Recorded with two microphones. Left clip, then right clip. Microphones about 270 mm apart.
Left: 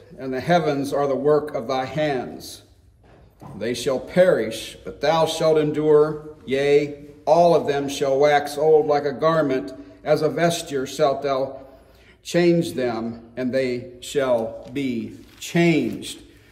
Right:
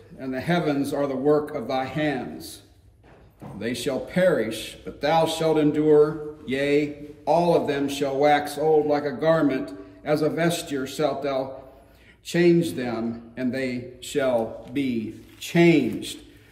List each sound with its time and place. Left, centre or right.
0.2 s speech: centre